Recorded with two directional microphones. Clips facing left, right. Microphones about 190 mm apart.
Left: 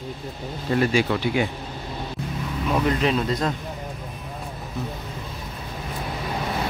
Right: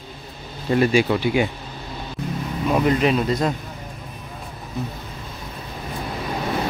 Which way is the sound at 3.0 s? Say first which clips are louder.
Right 3 dB; 10° right (ahead or behind).